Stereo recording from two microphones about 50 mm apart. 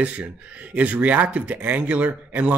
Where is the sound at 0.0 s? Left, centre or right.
Right.